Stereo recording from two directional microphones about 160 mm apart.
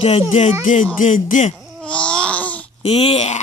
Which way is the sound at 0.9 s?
55° left (ahead or behind).